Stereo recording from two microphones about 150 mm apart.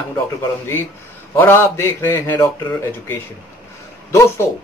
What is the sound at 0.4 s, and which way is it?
Speech, 15° left (ahead or behind).